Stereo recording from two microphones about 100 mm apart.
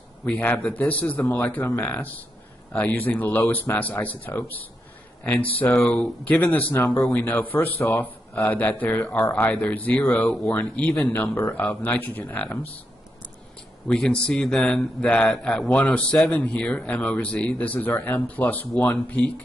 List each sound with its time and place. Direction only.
0.2 s speech: 15° left (ahead or behind)
5.7 s speech: 5° left (ahead or behind)
6.2 s speech: 15° left (ahead or behind)
13.8 s speech: 10° left (ahead or behind)